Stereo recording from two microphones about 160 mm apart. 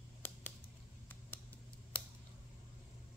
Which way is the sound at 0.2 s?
10° left (ahead or behind).